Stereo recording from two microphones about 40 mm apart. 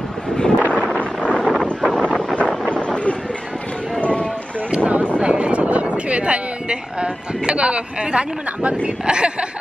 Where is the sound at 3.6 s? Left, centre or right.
Left.